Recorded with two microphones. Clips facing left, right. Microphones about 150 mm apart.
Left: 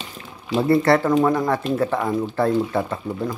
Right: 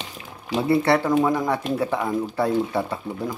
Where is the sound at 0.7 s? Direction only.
Centre (ahead or behind).